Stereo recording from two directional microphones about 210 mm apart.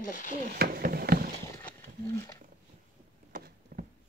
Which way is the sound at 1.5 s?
10° left (ahead or behind).